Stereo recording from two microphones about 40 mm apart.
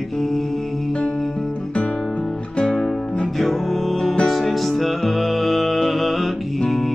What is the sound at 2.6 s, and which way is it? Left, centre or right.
Music, centre.